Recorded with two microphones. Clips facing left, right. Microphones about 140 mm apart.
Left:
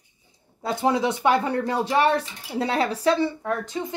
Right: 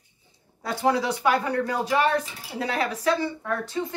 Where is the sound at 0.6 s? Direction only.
20° left (ahead or behind).